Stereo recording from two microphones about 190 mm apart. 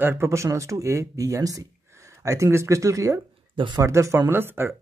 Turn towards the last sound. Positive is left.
turn(degrees=-10)  # may be behind; listen again after turning